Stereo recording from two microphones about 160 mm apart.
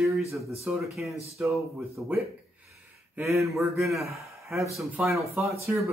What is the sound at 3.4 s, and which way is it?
Speech, centre (ahead or behind).